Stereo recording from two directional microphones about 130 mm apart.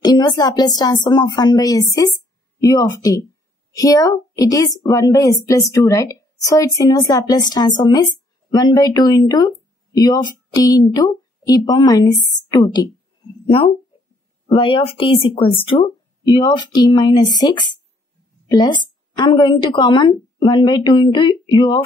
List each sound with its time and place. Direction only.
0.0 s a woman's voice: 30° left (ahead or behind)
13.5 s a woman's voice: 40° left (ahead or behind)